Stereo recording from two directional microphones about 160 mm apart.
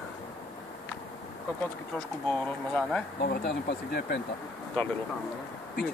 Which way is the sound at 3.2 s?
90° left.